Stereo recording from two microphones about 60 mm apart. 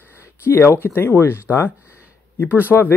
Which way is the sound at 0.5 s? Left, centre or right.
Left.